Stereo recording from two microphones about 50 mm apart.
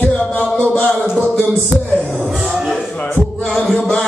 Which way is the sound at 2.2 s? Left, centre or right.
Centre.